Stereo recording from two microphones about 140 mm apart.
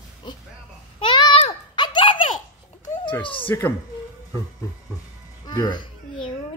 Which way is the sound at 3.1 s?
35° left (ahead or behind).